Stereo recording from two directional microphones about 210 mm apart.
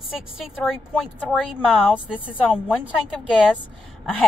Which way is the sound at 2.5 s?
5° right (ahead or behind).